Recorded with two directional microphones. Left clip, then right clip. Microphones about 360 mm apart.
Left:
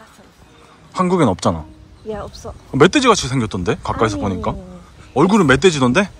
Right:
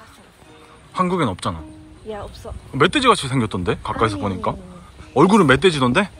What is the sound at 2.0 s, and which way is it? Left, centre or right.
Speech, left.